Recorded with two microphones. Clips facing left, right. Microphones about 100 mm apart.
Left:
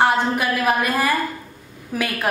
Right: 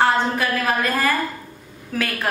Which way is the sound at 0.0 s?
15° left (ahead or behind).